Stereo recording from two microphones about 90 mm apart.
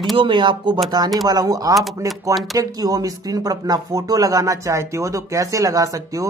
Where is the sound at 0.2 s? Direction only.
65° right (ahead or behind).